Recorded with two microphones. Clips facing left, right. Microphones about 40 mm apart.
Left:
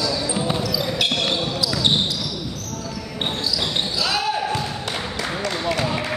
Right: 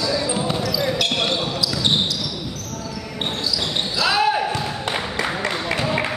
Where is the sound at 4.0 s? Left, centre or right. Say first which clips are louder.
Right 6 dB; centre.